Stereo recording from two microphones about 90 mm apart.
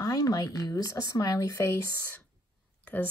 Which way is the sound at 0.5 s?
40° left (ahead or behind).